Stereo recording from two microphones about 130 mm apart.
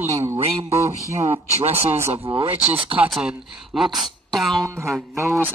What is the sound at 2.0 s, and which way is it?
Music, 20° right (ahead or behind).